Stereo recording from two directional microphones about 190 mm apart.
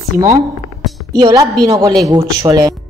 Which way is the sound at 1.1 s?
20° right (ahead or behind).